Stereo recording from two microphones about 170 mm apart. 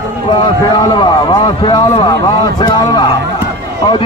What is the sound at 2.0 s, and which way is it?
A man's voice, 25° left (ahead or behind).